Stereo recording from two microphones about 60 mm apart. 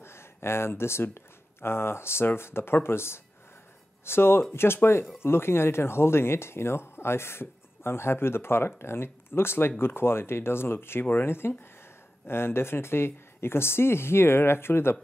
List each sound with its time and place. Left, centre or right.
0.0 s speech: left